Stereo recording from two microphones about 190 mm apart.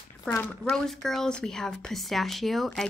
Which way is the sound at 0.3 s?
10° left (ahead or behind).